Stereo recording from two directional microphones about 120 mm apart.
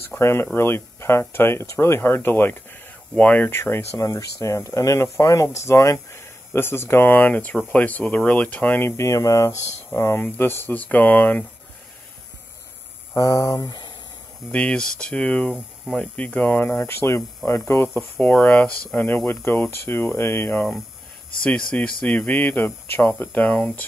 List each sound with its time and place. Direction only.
0.2 s speech: 20° left (ahead or behind)
13.1 s speech: 30° left (ahead or behind)
14.5 s speech: 10° left (ahead or behind)
15.5 s speech: centre (ahead or behind)
16.0 s speech: 10° left (ahead or behind)